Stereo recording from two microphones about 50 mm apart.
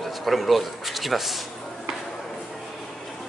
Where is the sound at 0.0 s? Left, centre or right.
Centre.